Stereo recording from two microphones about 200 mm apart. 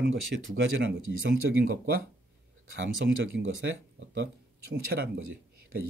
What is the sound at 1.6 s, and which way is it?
Speech, 50° right (ahead or behind).